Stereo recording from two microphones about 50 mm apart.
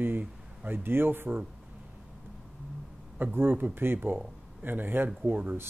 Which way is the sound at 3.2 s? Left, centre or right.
Right.